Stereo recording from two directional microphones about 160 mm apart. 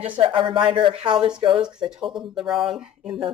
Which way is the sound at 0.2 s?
30° right (ahead or behind).